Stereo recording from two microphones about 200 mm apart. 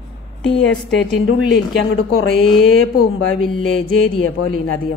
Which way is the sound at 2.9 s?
90° left.